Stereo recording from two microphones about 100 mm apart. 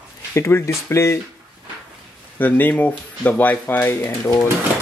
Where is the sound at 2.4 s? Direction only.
15° left (ahead or behind).